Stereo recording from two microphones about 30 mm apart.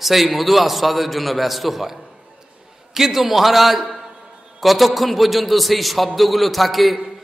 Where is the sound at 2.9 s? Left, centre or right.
Centre.